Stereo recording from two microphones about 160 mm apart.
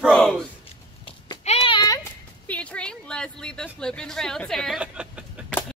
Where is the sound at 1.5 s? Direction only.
35° left (ahead or behind).